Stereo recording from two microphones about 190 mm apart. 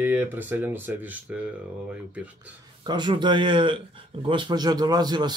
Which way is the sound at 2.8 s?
25° right (ahead or behind).